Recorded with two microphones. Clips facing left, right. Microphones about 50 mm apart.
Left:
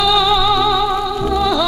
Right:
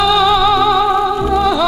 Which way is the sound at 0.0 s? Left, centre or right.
Centre.